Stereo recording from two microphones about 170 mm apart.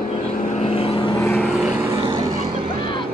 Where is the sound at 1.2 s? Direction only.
15° left (ahead or behind).